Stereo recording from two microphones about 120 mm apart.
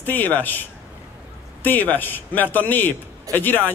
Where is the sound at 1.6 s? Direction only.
15° left (ahead or behind).